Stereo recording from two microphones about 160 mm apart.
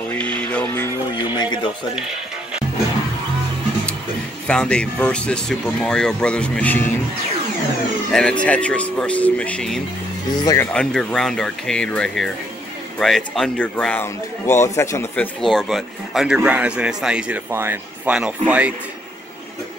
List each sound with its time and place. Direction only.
0.1 s music: 10° left (ahead or behind)
1.1 s music: 25° left (ahead or behind)
4.5 s speech: 5° left (ahead or behind)
8.1 s speech: 5° left (ahead or behind)
10.4 s speech: 20° left (ahead or behind)
10.7 s speech: 5° left (ahead or behind)
15.4 s speech: centre (ahead or behind)